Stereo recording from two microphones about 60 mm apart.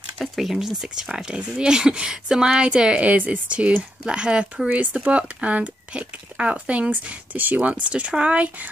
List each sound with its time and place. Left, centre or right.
0.2 s speech: centre; by 8.6 s right